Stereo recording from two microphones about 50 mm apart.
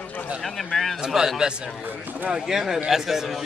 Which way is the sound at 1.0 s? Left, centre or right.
Centre.